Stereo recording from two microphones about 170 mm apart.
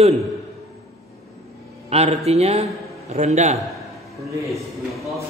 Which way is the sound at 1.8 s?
40° right (ahead or behind).